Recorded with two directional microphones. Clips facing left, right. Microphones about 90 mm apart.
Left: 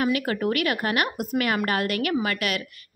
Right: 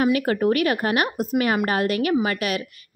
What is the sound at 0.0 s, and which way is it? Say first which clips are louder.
A woman's voice: right 4 dB; 30° right (ahead or behind).